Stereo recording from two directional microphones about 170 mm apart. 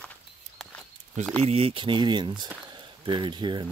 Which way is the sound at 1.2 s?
45° right (ahead or behind).